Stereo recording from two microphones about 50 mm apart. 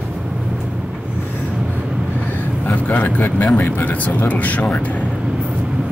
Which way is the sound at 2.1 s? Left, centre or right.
Left.